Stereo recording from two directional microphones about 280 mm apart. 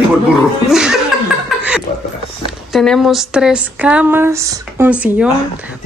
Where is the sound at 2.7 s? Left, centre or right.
Centre.